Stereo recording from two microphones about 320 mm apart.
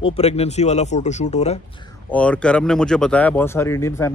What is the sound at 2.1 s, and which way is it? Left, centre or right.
Speech, centre.